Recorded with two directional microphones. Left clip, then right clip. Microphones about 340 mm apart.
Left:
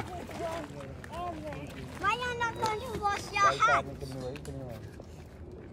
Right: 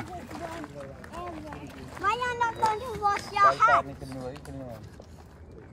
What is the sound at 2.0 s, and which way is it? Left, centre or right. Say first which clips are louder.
Speech: right 4 dB; centre.